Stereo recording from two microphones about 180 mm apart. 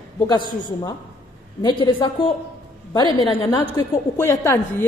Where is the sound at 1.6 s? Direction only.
25° left (ahead or behind).